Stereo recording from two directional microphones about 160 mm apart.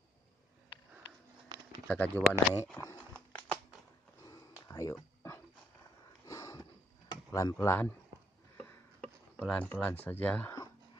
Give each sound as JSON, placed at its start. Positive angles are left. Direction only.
{"t": 1.9, "sound": "speech", "side_deg": 10}
{"t": 2.5, "sound": "a sound", "side_deg": 15}
{"t": 4.9, "sound": "dog", "side_deg": 15}
{"t": 6.2, "sound": "sniff", "side_deg": 20}
{"t": 7.2, "sound": "speech", "side_deg": 20}
{"t": 9.4, "sound": "speech", "side_deg": 10}